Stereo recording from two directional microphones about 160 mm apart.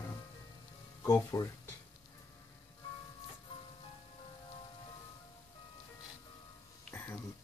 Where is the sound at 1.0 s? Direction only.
20° left (ahead or behind).